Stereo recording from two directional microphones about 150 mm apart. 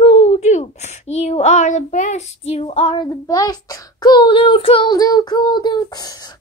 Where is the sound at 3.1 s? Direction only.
25° left (ahead or behind).